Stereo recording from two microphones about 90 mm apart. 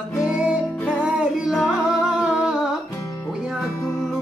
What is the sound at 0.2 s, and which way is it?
Music, 10° right (ahead or behind).